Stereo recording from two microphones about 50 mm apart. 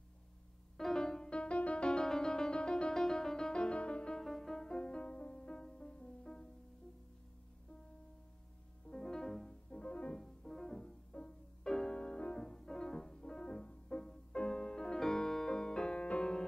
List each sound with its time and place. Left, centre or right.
0.7 s music: centre
4.2 s music: centre
8.9 s music: centre
9.7 s music: left
10.2 s music: centre